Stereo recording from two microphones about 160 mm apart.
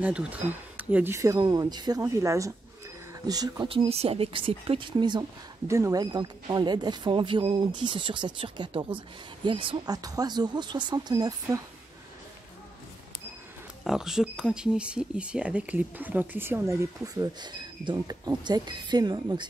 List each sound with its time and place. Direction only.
0.0 s speech: 10° right (ahead or behind)
3.6 s speech: 35° right (ahead or behind)
5.7 s speech: 20° right (ahead or behind)
13.8 s speech: 5° right (ahead or behind); by 19.4 s 25° right (ahead or behind)